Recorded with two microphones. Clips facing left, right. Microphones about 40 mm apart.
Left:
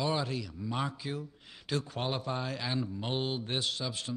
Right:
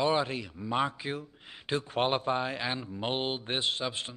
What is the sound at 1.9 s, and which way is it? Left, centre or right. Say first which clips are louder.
Speech: right 6 dB; right.